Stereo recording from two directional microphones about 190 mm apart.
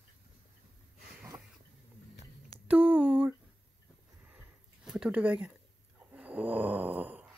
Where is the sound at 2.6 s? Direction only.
10° right (ahead or behind).